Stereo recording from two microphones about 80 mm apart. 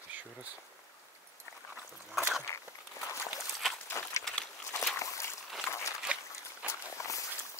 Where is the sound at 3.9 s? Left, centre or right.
Left.